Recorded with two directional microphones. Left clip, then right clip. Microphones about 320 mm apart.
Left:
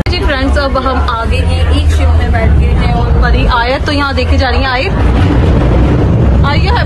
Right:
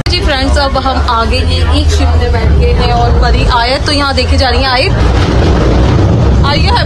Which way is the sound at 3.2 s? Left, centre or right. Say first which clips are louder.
Right 1 dB; centre.